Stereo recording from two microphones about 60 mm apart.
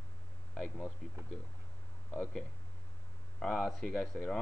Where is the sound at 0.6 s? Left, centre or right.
Left.